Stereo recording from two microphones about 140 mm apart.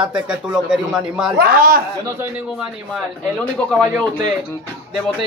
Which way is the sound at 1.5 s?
90° right.